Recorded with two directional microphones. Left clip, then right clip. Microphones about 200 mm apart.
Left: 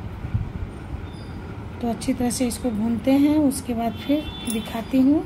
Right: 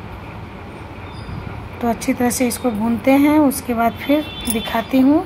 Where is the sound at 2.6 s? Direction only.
35° right (ahead or behind).